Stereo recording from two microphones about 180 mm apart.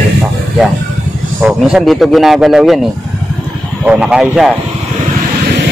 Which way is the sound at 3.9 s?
5° right (ahead or behind).